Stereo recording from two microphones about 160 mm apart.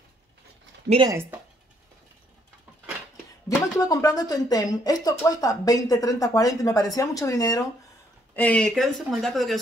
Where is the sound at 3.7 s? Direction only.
25° left (ahead or behind).